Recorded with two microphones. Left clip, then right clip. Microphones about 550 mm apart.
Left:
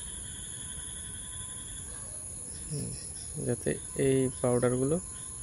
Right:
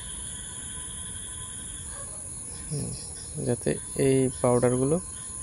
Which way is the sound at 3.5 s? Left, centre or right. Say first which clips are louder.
Right 4 dB; left.